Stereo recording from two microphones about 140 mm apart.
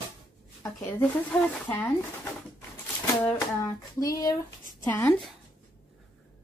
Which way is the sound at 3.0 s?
10° left (ahead or behind).